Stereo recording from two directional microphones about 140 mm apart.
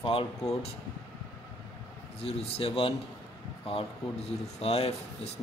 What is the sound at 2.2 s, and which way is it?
Speech, 45° left (ahead or behind).